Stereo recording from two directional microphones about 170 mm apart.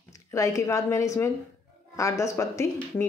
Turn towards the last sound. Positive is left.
turn(degrees=15)  # may be behind; listen again after turning